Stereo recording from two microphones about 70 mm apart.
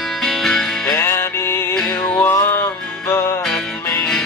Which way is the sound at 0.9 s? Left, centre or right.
Left.